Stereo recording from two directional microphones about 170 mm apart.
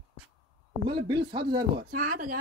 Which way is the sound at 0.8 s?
25° right (ahead or behind).